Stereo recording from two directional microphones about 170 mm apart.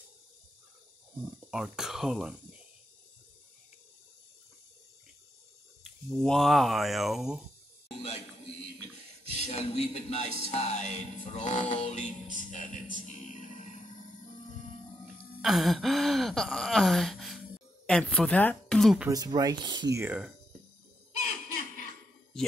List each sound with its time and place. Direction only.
1.4 s gasp: 5° right (ahead or behind)
5.9 s gasp: centre (ahead or behind)
9.4 s speech: 40° left (ahead or behind)
12.9 s music: 45° left (ahead or behind)
15.4 s gasp: centre (ahead or behind)
19.0 s speech: 20° right (ahead or behind)
20.0 s speech: 10° right (ahead or behind)